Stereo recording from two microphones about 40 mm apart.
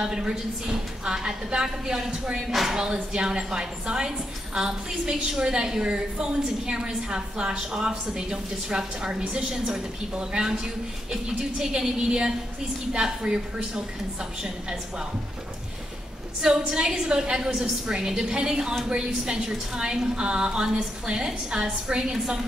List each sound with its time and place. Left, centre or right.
0.0 s a woman's voice: right
2.4 s a woman's voice: centre
16.3 s a woman's voice: centre